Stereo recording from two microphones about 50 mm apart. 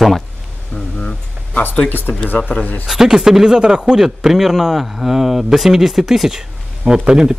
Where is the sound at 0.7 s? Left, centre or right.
Left.